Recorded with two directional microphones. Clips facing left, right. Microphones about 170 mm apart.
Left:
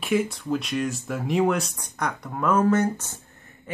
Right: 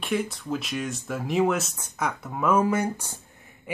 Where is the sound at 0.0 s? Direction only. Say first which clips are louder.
Left 4 dB; centre (ahead or behind).